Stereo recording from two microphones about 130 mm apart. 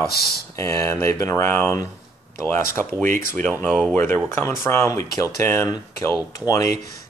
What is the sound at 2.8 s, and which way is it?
Speech, 5° left (ahead or behind).